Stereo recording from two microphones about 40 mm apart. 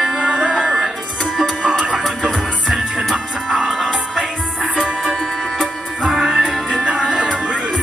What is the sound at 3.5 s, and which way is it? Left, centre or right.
Music, centre.